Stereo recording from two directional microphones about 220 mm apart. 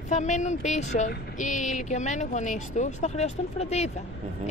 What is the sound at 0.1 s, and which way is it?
Speech, 30° left (ahead or behind).